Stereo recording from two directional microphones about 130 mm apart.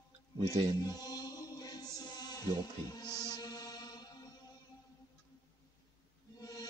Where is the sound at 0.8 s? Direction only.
30° left (ahead or behind).